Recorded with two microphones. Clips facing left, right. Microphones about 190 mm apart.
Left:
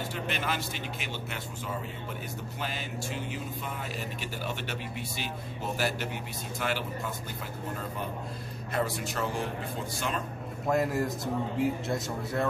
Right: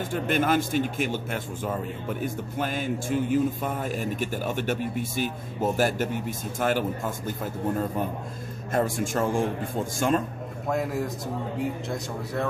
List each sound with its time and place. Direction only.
0.1 s a man's voice: 50° right (ahead or behind)
8.7 s a man's voice: 45° right (ahead or behind)
10.7 s a man's voice: centre (ahead or behind)